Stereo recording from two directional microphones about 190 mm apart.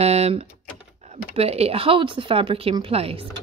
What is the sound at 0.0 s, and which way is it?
Speech, 35° right (ahead or behind).